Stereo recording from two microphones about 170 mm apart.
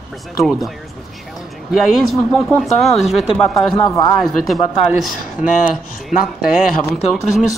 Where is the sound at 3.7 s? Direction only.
20° left (ahead or behind).